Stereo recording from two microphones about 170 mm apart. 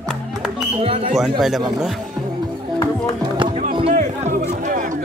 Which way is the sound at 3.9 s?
50° right (ahead or behind).